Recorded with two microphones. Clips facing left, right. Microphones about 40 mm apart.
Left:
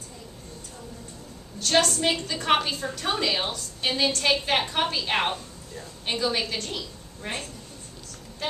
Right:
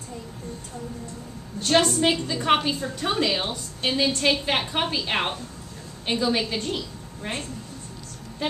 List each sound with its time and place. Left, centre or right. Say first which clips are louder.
1.6 s a woman's voice: right 2 dB; centre
3.3 s a woman's voice: right 1 dB; centre